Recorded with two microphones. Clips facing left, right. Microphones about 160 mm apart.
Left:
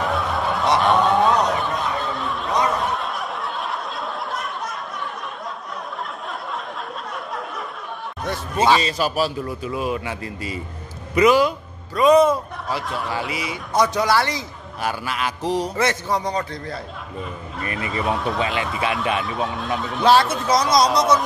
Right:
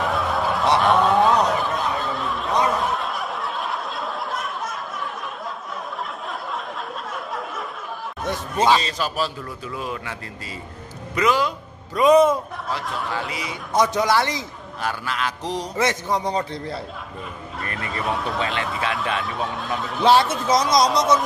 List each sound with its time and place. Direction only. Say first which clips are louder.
0.0 s snicker: even; centre (ahead or behind)
8.2 s a sound: left 1 dB; centre (ahead or behind)
8.6 s a man's voice: left 2 dB; 10° left (ahead or behind)
11.9 s a man's voice: even; 20° right (ahead or behind)
12.6 s a man's voice: left 3 dB; centre (ahead or behind)
13.9 s a man's voice: even; 20° right (ahead or behind)
14.8 s a man's voice: left 1 dB; 10° left (ahead or behind)
15.7 s a man's voice: left 1 dB; 15° right (ahead or behind)
16.3 s a man's voice: right 1 dB; 30° right (ahead or behind)
17.6 s speech: left 3 dB; 5° left (ahead or behind)